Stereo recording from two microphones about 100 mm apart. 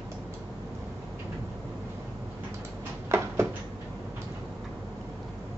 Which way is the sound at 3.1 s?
25° right (ahead or behind).